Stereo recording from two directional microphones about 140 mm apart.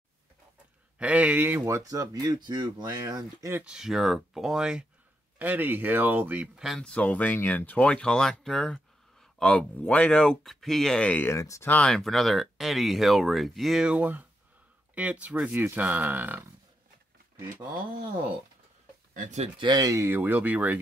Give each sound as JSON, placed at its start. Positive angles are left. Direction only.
{"t": 0.9, "sound": "speech", "side_deg": -10}
{"t": 1.8, "sound": "speech", "side_deg": -25}
{"t": 3.6, "sound": "speech", "side_deg": -5}
{"t": 11.7, "sound": "speech", "side_deg": 5}
{"t": 19.1, "sound": "speech", "side_deg": -60}
{"t": 19.6, "sound": "speech", "side_deg": -30}